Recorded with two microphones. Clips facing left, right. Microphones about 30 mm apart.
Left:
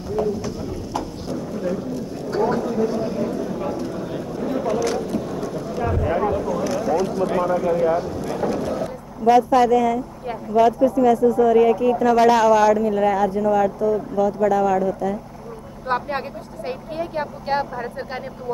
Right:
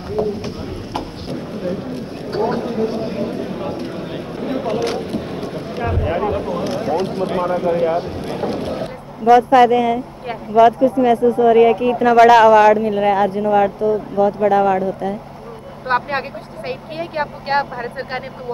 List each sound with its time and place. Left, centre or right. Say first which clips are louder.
0.1 s a sound: right 2 dB; right
12.2 s speech: right 8 dB; right
12.4 s speech: right 5 dB; right